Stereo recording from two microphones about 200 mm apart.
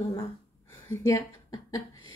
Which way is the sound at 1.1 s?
15° left (ahead or behind).